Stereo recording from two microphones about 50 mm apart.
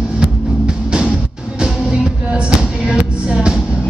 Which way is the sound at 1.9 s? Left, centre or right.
Centre.